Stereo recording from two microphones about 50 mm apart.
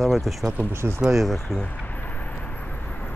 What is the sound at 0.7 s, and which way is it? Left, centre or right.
Speech, right.